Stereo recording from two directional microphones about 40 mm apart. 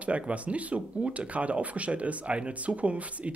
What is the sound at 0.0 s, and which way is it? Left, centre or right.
Speech, right.